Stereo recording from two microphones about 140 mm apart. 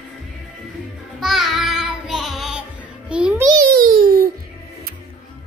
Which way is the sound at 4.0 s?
90° right.